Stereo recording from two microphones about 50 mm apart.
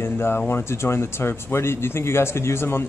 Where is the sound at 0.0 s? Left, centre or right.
Left.